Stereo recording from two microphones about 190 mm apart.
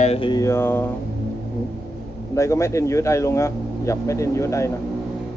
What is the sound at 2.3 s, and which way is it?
Speech, 15° left (ahead or behind).